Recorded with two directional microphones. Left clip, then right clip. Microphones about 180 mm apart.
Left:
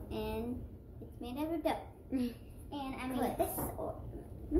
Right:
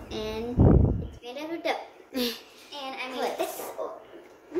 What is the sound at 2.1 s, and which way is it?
Speech, 65° right (ahead or behind).